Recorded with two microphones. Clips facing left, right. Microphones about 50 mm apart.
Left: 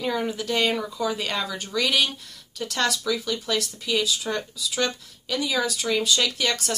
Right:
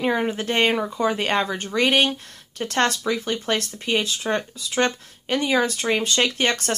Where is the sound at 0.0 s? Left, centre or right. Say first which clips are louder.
Right 4 dB; right.